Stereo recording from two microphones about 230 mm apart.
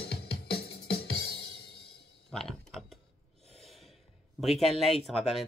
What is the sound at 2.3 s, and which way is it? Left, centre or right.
Computer keyboard, centre.